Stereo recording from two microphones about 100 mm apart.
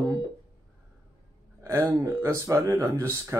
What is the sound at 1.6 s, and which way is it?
Speech, 25° right (ahead or behind).